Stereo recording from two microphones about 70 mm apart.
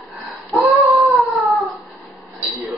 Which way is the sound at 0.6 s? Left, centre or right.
Right.